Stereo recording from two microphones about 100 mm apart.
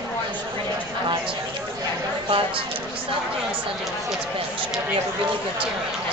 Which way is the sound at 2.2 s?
60° right (ahead or behind).